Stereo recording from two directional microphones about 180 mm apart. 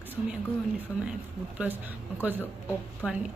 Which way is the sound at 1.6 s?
10° right (ahead or behind).